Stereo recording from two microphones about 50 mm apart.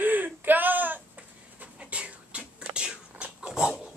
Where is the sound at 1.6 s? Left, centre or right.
Right.